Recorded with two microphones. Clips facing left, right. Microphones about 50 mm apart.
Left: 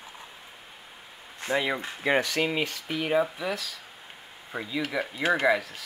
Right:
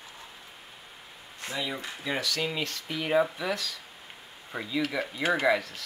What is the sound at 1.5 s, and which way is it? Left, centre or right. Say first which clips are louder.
Speech: left 7 dB; left.